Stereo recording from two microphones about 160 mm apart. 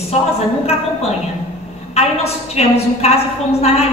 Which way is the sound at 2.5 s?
40° left (ahead or behind).